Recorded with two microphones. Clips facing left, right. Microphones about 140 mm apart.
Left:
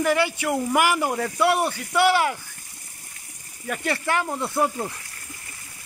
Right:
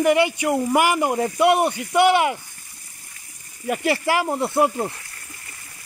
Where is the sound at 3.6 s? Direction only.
25° right (ahead or behind).